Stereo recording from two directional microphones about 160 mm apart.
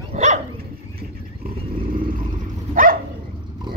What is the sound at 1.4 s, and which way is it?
Dog, 65° right (ahead or behind).